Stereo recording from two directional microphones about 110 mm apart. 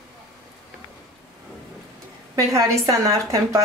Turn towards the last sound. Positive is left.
turn(degrees=-30)  # may be behind; listen again after turning